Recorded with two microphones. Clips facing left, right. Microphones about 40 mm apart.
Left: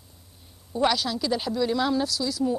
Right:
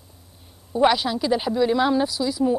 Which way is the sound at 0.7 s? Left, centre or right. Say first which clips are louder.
Right 5 dB; right.